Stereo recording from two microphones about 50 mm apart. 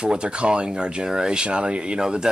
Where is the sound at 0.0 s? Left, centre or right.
Centre.